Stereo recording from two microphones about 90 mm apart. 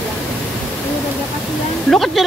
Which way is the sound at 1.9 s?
Centre (ahead or behind).